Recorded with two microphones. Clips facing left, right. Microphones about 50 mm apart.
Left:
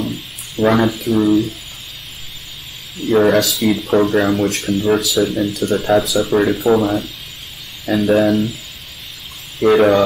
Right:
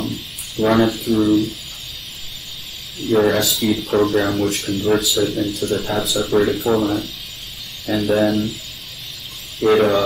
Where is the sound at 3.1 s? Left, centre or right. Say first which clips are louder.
Left 3 dB; centre.